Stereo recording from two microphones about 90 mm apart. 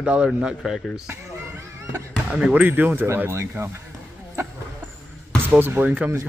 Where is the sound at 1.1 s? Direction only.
30° right (ahead or behind).